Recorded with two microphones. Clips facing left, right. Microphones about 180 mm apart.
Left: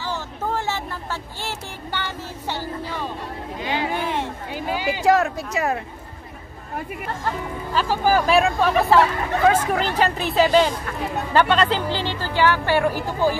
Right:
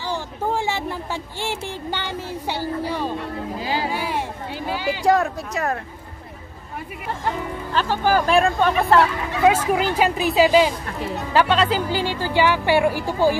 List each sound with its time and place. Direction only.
0.1 s vehicle: 15° right (ahead or behind)
1.4 s a woman's voice: 15° right (ahead or behind)
3.9 s a woman's voice: 10° right (ahead or behind)
7.7 s speech: 10° left (ahead or behind)
9.4 s a woman's voice: 10° right (ahead or behind)